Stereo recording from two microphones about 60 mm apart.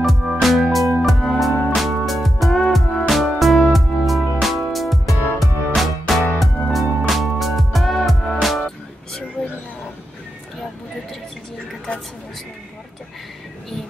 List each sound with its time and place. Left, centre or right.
0.0 s music: centre